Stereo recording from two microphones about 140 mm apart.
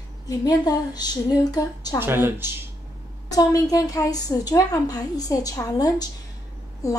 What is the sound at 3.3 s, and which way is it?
A woman's voice, 25° left (ahead or behind).